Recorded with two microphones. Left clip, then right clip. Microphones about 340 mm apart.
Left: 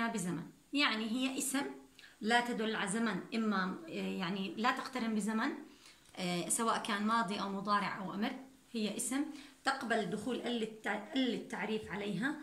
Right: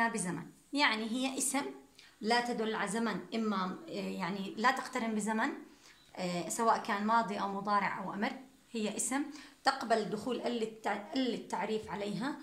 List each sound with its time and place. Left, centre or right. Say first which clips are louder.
0.0 s a woman's voice: right 5 dB; centre